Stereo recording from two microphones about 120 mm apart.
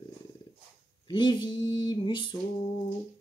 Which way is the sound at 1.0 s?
40° left (ahead or behind).